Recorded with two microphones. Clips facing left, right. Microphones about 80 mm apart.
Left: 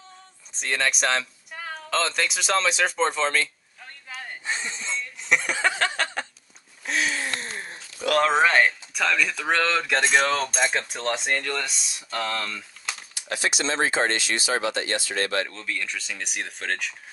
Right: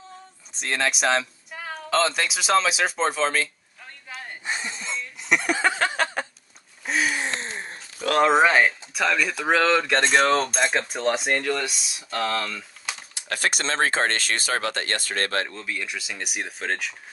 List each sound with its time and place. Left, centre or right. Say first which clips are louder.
0.6 s speech: right 1 dB; centre
4.1 s a sound: even; centre
7.2 s a sound: right 2 dB; right
8.2 s speech: right 2 dB; centre
13.3 s speech: right 1 dB; right
15.5 s speech: even; centre